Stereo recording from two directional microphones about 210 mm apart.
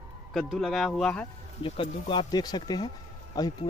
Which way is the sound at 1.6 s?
25° left (ahead or behind).